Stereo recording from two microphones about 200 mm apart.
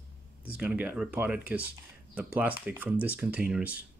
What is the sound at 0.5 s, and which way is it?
Speech, 5° right (ahead or behind).